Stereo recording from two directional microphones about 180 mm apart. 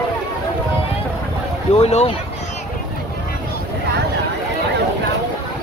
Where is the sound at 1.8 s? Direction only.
40° left (ahead or behind).